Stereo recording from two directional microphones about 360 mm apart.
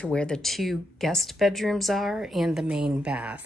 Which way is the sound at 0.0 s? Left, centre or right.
Centre.